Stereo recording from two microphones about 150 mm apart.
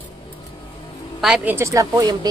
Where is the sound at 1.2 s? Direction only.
10° right (ahead or behind).